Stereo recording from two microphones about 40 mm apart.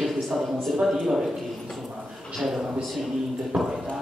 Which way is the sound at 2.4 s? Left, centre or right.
Centre.